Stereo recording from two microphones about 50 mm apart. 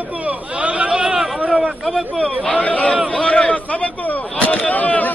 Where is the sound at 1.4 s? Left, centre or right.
Right.